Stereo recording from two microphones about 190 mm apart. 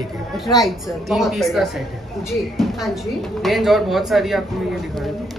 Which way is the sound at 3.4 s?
Centre (ahead or behind).